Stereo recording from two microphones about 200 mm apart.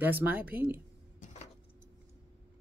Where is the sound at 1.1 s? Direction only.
40° left (ahead or behind).